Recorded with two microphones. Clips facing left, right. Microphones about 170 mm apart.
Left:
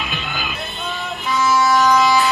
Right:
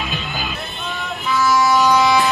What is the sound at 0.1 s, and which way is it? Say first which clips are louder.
Music: right 1 dB; 40° right (ahead or behind).